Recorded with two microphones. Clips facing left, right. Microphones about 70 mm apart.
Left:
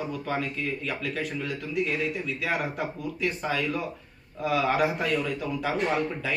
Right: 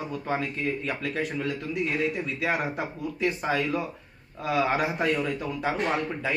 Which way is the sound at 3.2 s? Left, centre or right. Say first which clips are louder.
Right 2 dB; right.